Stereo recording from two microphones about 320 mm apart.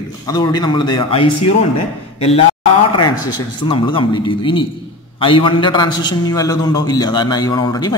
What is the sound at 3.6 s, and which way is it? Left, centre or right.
A man's voice, centre.